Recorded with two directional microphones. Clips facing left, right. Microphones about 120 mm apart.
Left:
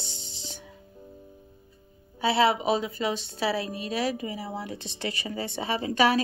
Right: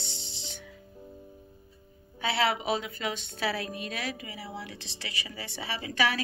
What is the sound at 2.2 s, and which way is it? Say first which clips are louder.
A woman's voice: left 5 dB; 30° left (ahead or behind).